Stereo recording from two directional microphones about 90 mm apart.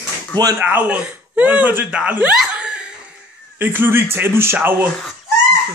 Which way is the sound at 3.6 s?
25° right (ahead or behind).